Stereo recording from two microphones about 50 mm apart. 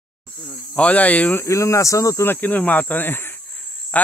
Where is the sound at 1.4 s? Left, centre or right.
Left.